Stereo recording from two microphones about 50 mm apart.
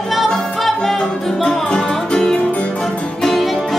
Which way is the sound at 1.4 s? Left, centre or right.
Centre.